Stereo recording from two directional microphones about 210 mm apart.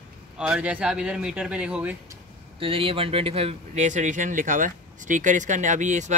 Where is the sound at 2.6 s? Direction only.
25° right (ahead or behind).